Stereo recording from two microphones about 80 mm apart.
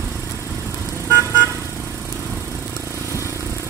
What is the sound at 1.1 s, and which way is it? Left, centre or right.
Vehicle, right.